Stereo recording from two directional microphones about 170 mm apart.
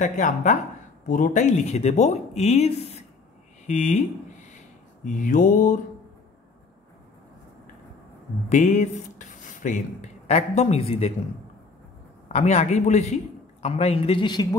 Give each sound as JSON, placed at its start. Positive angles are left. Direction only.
{"t": 0.0, "sound": "a man's voice", "side_deg": 45}
{"t": 8.5, "sound": "speech", "side_deg": 45}
{"t": 12.3, "sound": "a man's voice", "side_deg": 40}